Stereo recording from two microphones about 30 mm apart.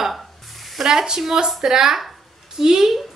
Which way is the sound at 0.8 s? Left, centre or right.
Right.